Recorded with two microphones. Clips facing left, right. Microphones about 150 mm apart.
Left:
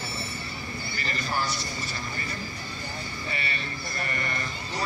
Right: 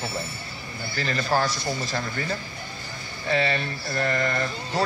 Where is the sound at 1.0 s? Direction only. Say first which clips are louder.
Right 7 dB; 90° right.